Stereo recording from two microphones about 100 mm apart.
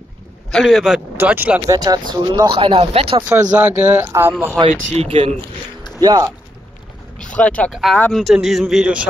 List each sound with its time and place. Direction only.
0.5 s a man's voice: centre (ahead or behind)
1.1 s speech: 20° right (ahead or behind)
1.7 s speech: 40° right (ahead or behind); by 3.3 s 70° right (ahead or behind)
3.5 s speech: 15° right (ahead or behind)
4.6 s speech: 90° right
5.9 s speech: 40° right (ahead or behind)
7.2 s speech: 15° left (ahead or behind)
7.7 s a man's voice: centre (ahead or behind)